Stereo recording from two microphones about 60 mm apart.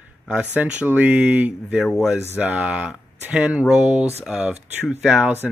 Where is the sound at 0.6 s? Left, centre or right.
Centre.